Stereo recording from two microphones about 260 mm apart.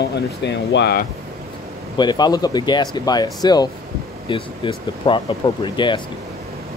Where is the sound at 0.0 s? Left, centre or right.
Left.